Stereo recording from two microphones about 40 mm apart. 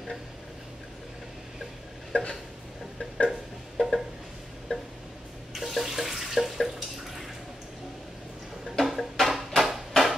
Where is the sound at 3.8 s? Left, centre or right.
Left.